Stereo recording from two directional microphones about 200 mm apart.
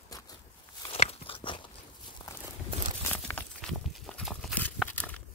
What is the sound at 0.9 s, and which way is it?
Biting, 30° left (ahead or behind).